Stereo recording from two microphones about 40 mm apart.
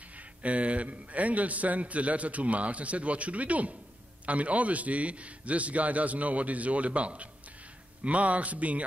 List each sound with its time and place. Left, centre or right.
0.4 s a man's voice: right